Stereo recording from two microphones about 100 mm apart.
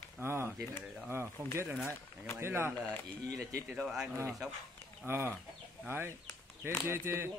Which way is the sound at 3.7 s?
5° right (ahead or behind).